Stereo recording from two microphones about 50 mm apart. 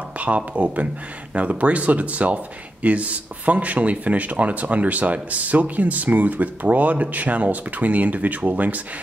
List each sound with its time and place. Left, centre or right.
0.5 s speech: right